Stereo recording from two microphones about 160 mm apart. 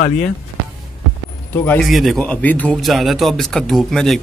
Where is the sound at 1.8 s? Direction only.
Centre (ahead or behind).